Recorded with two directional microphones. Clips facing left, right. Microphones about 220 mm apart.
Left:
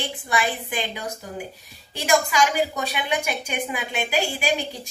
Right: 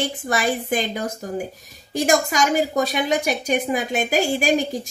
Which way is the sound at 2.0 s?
45° right (ahead or behind).